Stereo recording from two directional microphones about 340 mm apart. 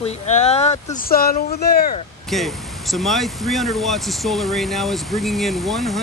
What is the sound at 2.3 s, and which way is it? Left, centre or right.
Speech, centre.